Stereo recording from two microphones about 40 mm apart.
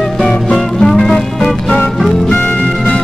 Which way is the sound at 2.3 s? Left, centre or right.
Left.